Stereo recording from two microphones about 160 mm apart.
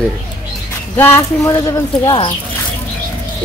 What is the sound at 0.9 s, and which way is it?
Speech, 15° left (ahead or behind).